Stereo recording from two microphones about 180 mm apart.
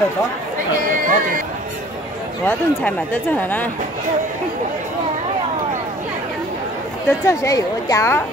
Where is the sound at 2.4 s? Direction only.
10° left (ahead or behind).